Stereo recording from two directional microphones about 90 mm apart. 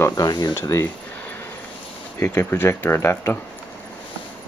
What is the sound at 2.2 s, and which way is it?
Speech, 25° left (ahead or behind).